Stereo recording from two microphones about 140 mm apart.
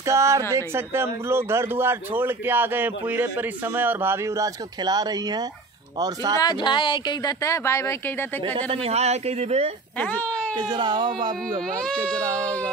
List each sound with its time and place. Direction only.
0.0 s speech: 20° right (ahead or behind)
6.4 s speech: 35° left (ahead or behind); by 8.5 s 15° left (ahead or behind)
8.5 s speech: 45° right (ahead or behind)
9.9 s speech: 10° left (ahead or behind)
10.5 s speech: 30° right (ahead or behind)
11.8 s speech: 5° left (ahead or behind)